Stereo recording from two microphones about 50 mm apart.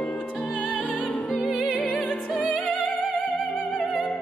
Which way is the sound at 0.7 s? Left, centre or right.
Left.